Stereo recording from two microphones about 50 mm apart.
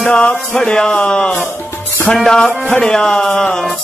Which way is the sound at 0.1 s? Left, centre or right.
Left.